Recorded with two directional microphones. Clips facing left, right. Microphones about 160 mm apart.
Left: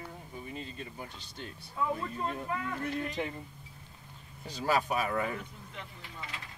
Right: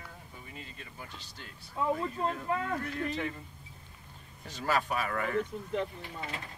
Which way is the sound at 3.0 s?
20° left (ahead or behind).